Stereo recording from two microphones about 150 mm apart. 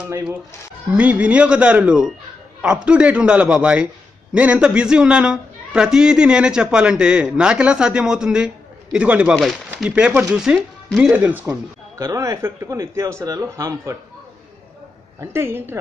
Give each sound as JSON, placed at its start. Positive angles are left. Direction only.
{"t": 0.9, "sound": "a man's voice", "side_deg": -10}
{"t": 15.1, "sound": "a man's voice", "side_deg": -15}